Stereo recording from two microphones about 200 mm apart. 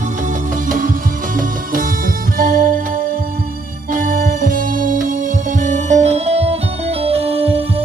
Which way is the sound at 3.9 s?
45° right (ahead or behind).